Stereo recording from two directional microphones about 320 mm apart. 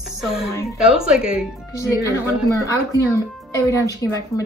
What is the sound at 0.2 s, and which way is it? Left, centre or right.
A woman's voice, centre.